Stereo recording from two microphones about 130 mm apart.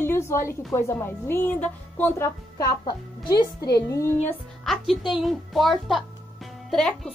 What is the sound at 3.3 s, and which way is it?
Speech, 25° left (ahead or behind).